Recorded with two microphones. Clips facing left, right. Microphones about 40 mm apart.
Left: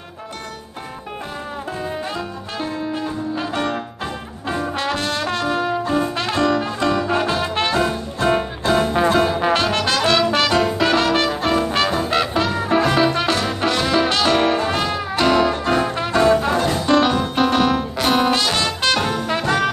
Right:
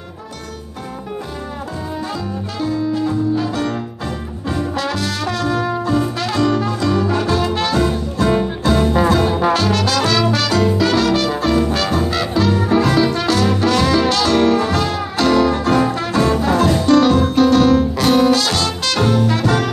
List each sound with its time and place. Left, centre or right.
2.6 s music: left
8.9 s music: left